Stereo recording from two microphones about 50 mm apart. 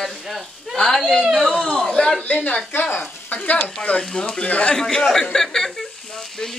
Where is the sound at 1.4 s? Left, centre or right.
Centre.